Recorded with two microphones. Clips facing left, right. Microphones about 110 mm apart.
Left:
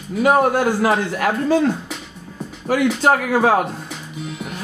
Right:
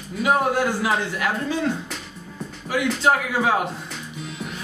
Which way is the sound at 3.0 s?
50° left (ahead or behind).